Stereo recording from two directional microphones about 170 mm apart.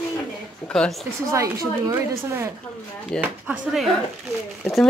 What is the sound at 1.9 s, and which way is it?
Speech, 15° right (ahead or behind).